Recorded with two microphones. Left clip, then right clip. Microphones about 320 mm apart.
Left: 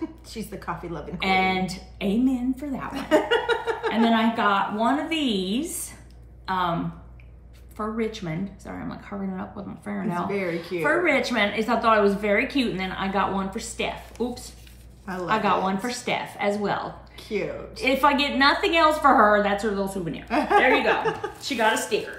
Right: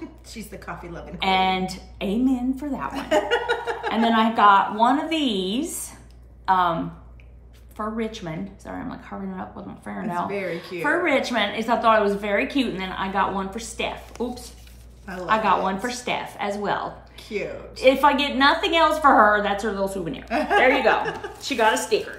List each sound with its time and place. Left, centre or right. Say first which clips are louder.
0.3 s a woman's voice: even; centre
1.2 s a woman's voice: right 2 dB; centre
2.9 s speech: left 1 dB; centre
4.1 s a woman's voice: right 9 dB; centre
7.7 s a woman's voice: even; centre
10.2 s a woman's voice: left 3 dB; centre
10.8 s a woman's voice: even; centre
17.3 s a woman's voice: left 1 dB; centre
17.7 s a woman's voice: right 3 dB; centre
20.2 s a woman's voice: even; centre
21.5 s a woman's voice: right 3 dB; centre